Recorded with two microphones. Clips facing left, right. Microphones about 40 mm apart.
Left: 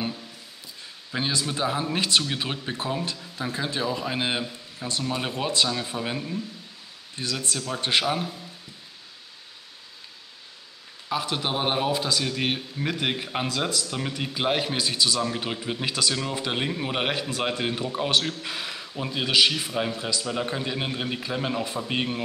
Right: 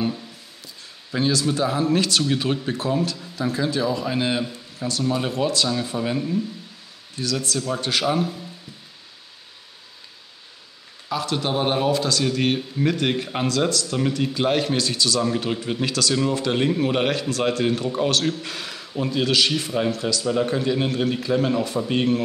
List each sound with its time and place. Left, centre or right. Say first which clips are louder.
1.1 s a man's voice: right 6 dB; centre
5.3 s speech: right 3 dB; left
5.7 s speech: right 5 dB; centre
7.2 s speech: right 4 dB; left
8.0 s speech: right 4 dB; centre
11.1 s a man's voice: right 3 dB; centre